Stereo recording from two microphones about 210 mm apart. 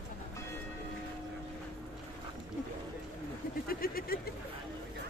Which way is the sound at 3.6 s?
45° left (ahead or behind).